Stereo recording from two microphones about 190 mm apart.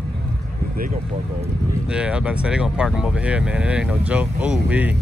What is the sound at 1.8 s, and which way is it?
Speech, 5° right (ahead or behind).